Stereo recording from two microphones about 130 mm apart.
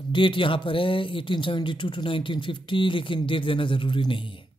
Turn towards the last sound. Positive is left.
turn(degrees=40)  # may be behind; listen again after turning